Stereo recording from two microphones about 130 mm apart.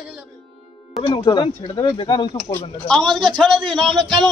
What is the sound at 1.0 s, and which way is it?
Speech, 40° left (ahead or behind).